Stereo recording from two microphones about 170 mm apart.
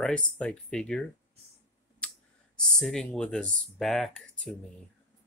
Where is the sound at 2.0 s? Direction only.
5° left (ahead or behind).